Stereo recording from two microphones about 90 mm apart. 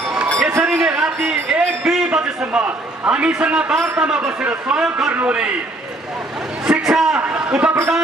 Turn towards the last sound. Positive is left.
turn(degrees=-10)  # may be behind; listen again after turning